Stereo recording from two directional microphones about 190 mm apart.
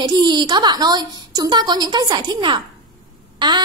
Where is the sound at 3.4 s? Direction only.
25° right (ahead or behind).